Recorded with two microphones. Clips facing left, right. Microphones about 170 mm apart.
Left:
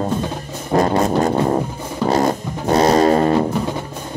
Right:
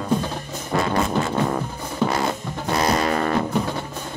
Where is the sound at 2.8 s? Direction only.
30° left (ahead or behind).